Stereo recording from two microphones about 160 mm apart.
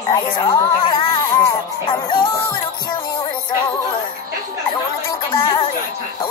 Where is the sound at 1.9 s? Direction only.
30° left (ahead or behind).